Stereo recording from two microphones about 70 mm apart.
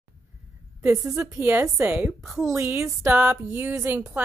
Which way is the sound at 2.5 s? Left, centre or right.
Right.